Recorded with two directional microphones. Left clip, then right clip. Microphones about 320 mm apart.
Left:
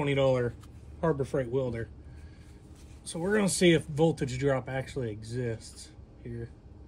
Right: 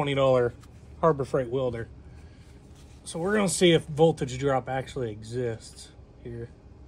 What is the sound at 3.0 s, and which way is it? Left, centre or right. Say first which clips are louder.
Speech: right 2 dB; centre.